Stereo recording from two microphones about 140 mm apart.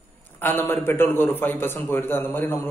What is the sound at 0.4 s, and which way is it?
A man's voice, 15° left (ahead or behind).